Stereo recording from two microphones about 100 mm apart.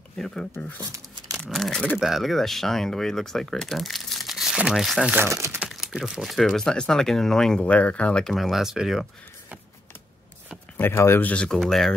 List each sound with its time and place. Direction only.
0.2 s speech: 5° left (ahead or behind)
1.4 s speech: 5° left (ahead or behind)
5.3 s speech: 30° right (ahead or behind)
5.7 s speech: 5° right (ahead or behind)
10.8 s speech: 25° left (ahead or behind); by 11.9 s centre (ahead or behind)